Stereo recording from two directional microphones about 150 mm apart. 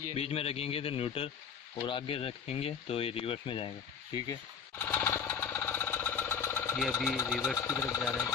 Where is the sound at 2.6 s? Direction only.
40° left (ahead or behind).